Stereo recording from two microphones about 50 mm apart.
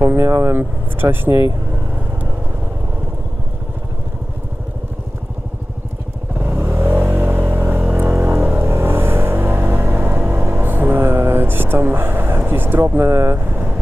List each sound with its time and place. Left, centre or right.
0.1 s speech: right
0.6 s speech: right
6.3 s vehicle: right
8.5 s music: right
13.1 s speech: right
13.4 s vehicle: right